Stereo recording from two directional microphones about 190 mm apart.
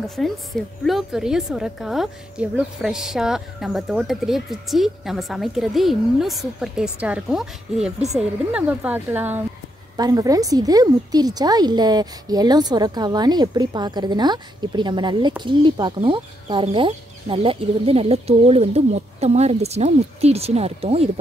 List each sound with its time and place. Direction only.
0.0 s a woman's voice: centre (ahead or behind); by 21.1 s 30° right (ahead or behind)